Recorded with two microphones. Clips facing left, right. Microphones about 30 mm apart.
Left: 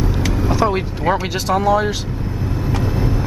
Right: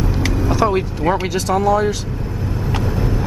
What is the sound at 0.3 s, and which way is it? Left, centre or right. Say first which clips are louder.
Vehicle: right 1 dB; centre.